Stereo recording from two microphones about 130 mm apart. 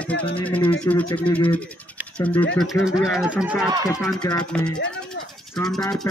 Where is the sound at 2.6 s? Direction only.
Centre (ahead or behind).